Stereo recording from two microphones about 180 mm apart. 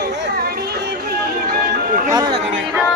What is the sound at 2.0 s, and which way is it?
Speech, 20° right (ahead or behind).